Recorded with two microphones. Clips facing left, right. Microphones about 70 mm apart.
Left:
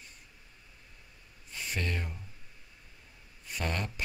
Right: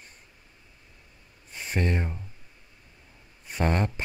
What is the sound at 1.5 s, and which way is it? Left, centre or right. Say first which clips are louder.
Speech: right 7 dB; right.